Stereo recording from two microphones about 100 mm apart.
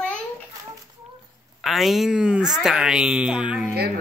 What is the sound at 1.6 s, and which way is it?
Speech, centre (ahead or behind).